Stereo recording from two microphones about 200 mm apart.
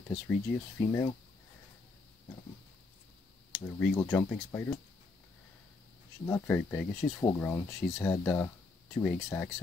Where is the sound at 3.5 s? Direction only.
5° left (ahead or behind).